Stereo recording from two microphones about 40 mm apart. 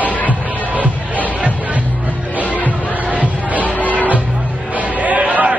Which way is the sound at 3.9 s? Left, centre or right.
Right.